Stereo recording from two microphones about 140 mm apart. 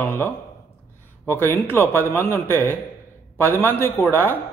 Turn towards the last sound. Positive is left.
turn(degrees=15)  # may be behind; listen again after turning